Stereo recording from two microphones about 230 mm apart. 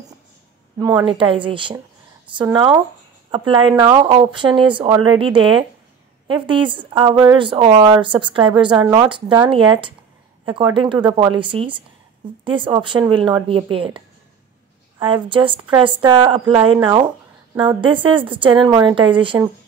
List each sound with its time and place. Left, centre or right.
0.7 s speech: centre